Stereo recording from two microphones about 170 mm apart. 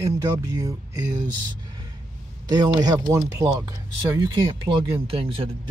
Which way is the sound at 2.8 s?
20° right (ahead or behind).